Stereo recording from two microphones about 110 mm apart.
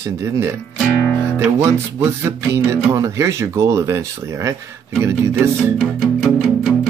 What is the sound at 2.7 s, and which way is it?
Speech, 25° right (ahead or behind).